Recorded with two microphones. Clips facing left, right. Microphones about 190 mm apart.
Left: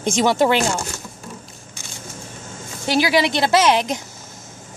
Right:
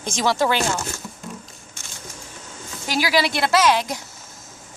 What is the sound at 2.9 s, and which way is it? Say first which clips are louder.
Speech: left 3 dB; 20° left (ahead or behind).